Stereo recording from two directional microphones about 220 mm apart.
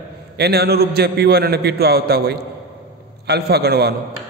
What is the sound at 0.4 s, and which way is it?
A man's voice, 45° right (ahead or behind).